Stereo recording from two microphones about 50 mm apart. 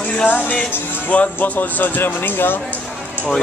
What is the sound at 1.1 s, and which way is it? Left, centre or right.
Speech, left.